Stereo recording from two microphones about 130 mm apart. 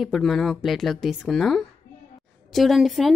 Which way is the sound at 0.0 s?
Centre (ahead or behind).